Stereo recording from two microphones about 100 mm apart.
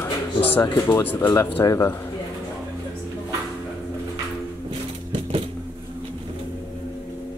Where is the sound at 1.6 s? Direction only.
35° left (ahead or behind).